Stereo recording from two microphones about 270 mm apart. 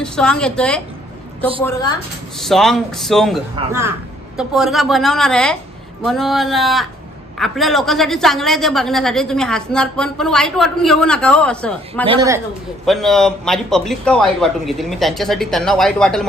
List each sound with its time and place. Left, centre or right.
0.0 s a woman's voice: centre
2.3 s a woman's voice: centre
12.1 s a man's voice: centre
12.8 s a woman's voice: centre